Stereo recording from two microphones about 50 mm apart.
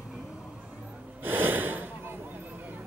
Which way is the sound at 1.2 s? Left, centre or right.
Right.